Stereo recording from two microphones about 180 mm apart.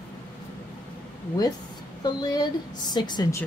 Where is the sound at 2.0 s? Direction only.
20° left (ahead or behind).